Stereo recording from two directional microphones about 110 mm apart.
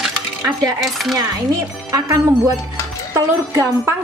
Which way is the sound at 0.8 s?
Centre (ahead or behind).